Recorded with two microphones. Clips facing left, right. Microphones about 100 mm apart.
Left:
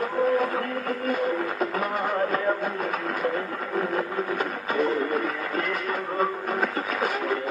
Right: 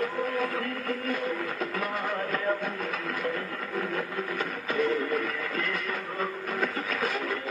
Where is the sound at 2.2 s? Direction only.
40° left (ahead or behind).